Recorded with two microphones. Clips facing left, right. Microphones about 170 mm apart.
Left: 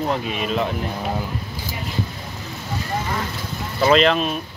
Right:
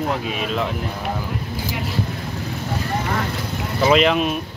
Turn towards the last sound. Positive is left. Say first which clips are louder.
# even
turn(degrees=-10)  # may be behind; listen again after turning